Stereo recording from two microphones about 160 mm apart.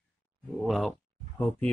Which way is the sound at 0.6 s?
5° left (ahead or behind).